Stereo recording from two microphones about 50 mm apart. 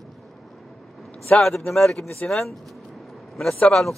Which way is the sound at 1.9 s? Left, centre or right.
Centre.